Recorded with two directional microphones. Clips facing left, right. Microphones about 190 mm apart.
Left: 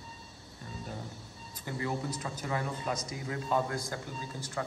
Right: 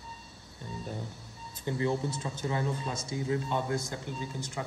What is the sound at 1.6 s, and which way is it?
A man's voice, 25° right (ahead or behind).